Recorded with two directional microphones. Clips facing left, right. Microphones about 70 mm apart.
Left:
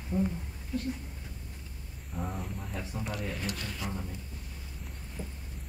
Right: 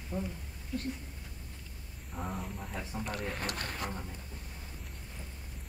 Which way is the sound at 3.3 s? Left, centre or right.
Right.